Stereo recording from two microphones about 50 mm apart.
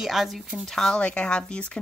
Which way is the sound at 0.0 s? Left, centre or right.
Centre.